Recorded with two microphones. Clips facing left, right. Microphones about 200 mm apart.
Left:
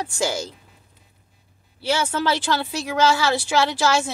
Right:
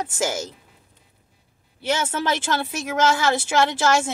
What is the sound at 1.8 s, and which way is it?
A woman's voice, 20° right (ahead or behind).